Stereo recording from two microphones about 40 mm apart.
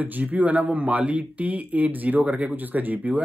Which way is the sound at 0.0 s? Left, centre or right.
Right.